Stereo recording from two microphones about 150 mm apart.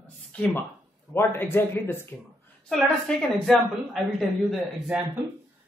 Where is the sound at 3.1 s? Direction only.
5° left (ahead or behind).